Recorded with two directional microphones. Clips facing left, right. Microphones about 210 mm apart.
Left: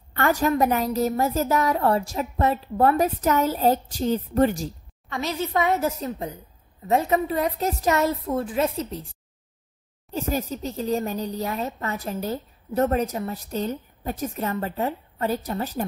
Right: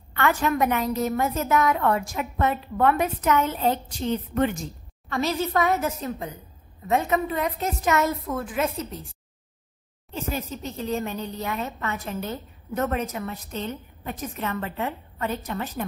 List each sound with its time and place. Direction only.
0.1 s speech: 40° left (ahead or behind)
5.1 s a woman's voice: 20° left (ahead or behind)
10.1 s speech: 40° left (ahead or behind)